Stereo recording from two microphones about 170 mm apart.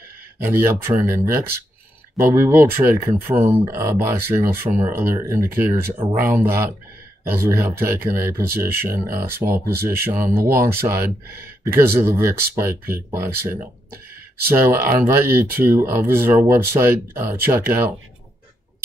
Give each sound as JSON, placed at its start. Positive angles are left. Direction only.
{"t": 0.4, "sound": "speech", "side_deg": -15}